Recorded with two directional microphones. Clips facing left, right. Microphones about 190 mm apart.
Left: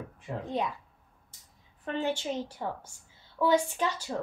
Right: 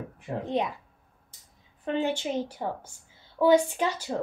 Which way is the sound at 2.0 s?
15° right (ahead or behind).